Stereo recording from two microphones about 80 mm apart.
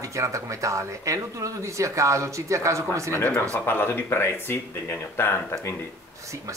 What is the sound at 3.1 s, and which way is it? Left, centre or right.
Speech, centre.